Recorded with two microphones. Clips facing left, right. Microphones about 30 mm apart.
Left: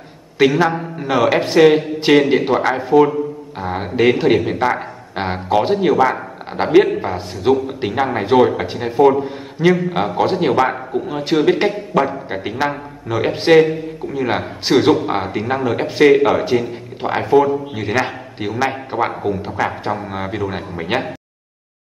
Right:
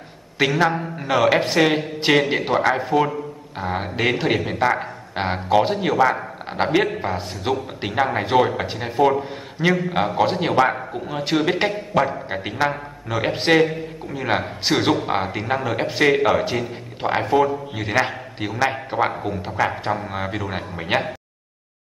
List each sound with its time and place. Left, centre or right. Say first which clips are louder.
0.4 s a man's voice: left 4 dB; centre